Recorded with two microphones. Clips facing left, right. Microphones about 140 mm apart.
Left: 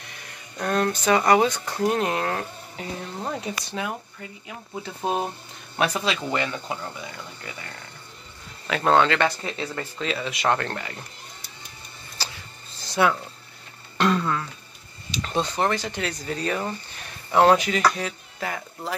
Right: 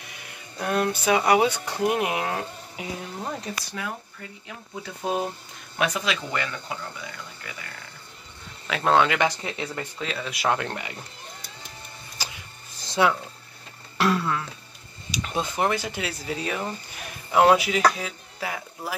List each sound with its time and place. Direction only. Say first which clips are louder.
0.1 s speech: even; 10° right (ahead or behind)
3.2 s speech: left 4 dB; 10° left (ahead or behind)
3.8 s speech: left 3 dB; 25° left (ahead or behind)
8.6 s speech: left 1 dB; centre (ahead or behind); by 9.8 s 15° right (ahead or behind)
9.9 s speech: left 3 dB; centre (ahead or behind)
12.2 s a sound: left 1 dB; 15° right (ahead or behind)
13.9 s a sound: left 1 dB; 5° right (ahead or behind)
15.2 s speech: left 1 dB; 5° right (ahead or behind)